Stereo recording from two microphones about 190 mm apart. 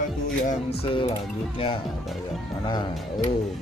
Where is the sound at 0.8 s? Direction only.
30° left (ahead or behind).